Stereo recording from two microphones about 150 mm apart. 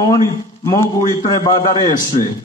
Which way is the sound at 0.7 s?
20° left (ahead or behind).